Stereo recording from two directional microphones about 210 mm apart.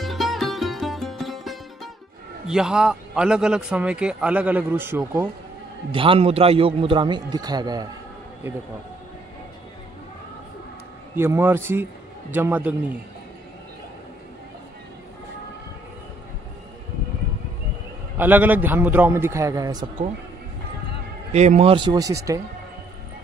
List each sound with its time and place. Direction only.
0.0 s music: centre (ahead or behind)
2.4 s a man's voice: 5° right (ahead or behind)
5.9 s a man's voice: 25° right (ahead or behind)
11.1 s a man's voice: 10° right (ahead or behind)
18.1 s a man's voice: 10° right (ahead or behind)
21.3 s a man's voice: 30° right (ahead or behind); by 22.4 s 15° right (ahead or behind)